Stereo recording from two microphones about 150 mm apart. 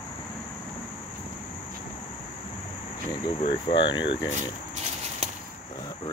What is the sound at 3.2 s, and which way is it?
Speech, 35° left (ahead or behind).